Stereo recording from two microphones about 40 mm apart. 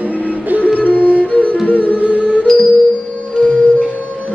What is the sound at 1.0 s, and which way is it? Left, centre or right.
Music, right.